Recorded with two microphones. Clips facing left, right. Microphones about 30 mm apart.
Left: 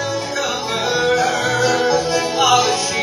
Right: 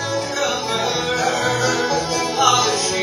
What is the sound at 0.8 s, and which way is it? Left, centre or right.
Music, centre.